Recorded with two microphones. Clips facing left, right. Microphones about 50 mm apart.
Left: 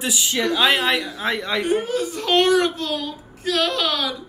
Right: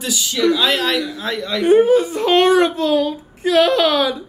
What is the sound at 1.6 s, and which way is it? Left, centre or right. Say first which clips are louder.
A child's voice: right 14 dB; right.